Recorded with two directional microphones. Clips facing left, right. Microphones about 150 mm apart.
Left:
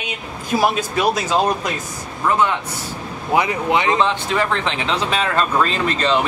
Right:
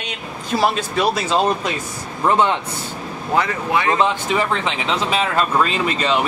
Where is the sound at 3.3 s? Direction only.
15° left (ahead or behind).